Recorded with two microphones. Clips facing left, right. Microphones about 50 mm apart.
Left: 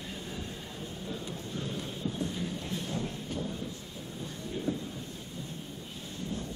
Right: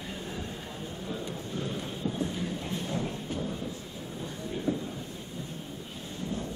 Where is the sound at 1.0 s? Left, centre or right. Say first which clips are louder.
Right 3 dB; centre.